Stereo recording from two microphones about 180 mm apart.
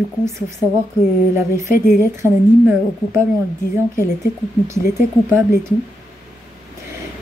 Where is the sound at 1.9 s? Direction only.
15° right (ahead or behind).